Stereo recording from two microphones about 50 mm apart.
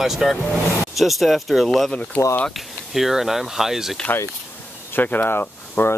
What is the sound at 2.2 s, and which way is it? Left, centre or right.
Speech, left.